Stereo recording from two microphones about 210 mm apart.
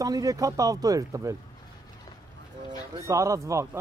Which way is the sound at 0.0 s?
15° right (ahead or behind).